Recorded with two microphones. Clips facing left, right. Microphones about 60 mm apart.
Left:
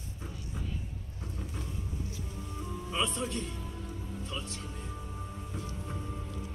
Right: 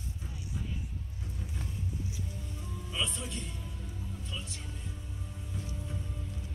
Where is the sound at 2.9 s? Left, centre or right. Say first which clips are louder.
Left 4 dB; left.